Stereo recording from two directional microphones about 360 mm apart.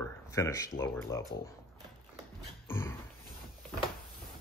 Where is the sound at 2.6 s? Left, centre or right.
Centre.